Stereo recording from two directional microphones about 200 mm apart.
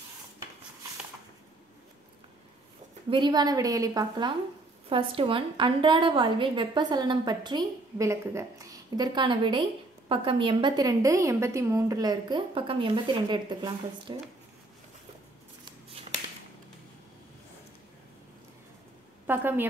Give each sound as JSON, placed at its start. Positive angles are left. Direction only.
{"t": 3.1, "sound": "a woman's voice", "side_deg": -20}
{"t": 19.2, "sound": "a woman's voice", "side_deg": -10}